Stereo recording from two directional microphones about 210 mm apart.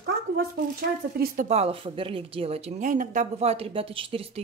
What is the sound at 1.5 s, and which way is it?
Speech, 30° right (ahead or behind).